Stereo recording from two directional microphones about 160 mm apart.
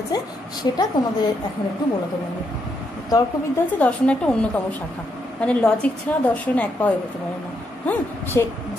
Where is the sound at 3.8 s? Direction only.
10° left (ahead or behind).